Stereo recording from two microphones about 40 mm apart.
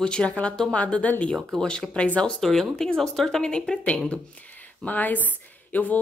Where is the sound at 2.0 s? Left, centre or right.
Left.